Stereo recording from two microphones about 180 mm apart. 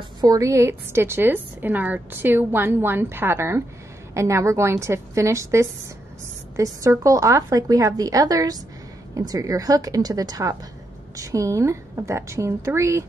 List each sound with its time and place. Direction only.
0.2 s a woman's voice: 20° right (ahead or behind)